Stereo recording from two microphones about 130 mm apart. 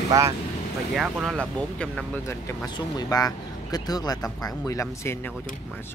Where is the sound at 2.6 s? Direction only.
35° left (ahead or behind).